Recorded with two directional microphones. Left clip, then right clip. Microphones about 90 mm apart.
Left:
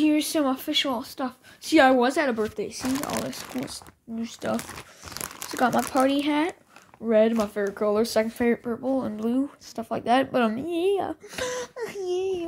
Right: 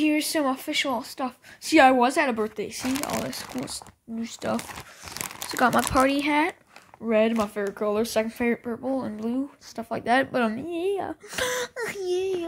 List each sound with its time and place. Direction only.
0.0 s a woman's voice: 10° right (ahead or behind); by 2.9 s 45° right (ahead or behind)
2.9 s a woman's voice: 25° right (ahead or behind)
4.5 s speech: 5° right (ahead or behind)
5.1 s crumpling: 15° right (ahead or behind)
5.7 s a woman's voice: 30° right (ahead or behind); by 10.6 s centre (ahead or behind)
10.6 s a woman's voice: 10° left (ahead or behind)
11.2 s a woman's voice: 30° right (ahead or behind)
11.6 s a child's voice: 50° right (ahead or behind)